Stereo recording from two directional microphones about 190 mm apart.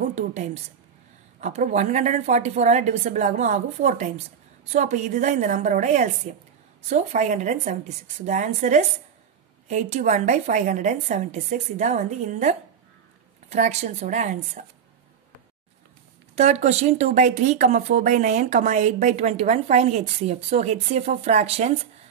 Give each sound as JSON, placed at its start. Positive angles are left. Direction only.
{"t": 0.0, "sound": "a woman's voice", "side_deg": -35}
{"t": 16.3, "sound": "speech", "side_deg": -35}